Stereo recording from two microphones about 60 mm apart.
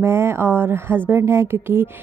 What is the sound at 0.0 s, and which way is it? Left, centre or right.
A woman's voice, right.